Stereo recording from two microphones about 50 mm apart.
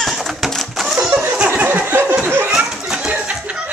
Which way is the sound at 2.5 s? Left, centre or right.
Centre.